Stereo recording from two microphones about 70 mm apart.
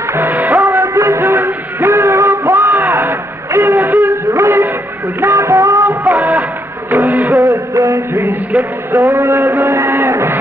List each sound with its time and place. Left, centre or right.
0.1 s music: right
0.5 s music: right
8.9 s a sound: right